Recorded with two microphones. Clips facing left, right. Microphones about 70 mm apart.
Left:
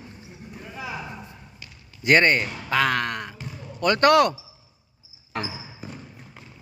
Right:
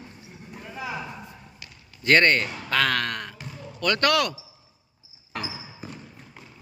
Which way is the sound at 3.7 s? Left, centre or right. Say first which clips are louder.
Left 5 dB; left.